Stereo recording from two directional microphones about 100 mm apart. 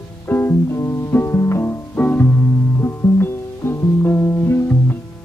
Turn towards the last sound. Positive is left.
turn(degrees=25)  # may be behind; listen again after turning